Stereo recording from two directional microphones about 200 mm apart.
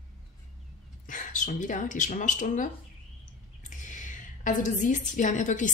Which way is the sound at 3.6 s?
40° left (ahead or behind).